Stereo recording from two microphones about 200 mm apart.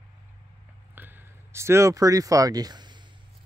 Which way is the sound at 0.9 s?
10° right (ahead or behind).